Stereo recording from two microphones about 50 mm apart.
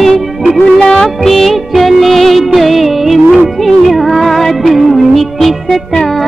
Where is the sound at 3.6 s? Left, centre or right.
Centre.